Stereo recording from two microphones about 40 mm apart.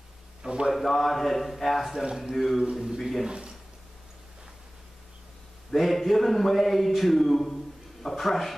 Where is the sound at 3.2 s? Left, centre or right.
Right.